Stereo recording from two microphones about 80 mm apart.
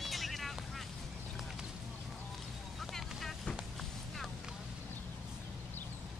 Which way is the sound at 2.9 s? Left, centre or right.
Centre.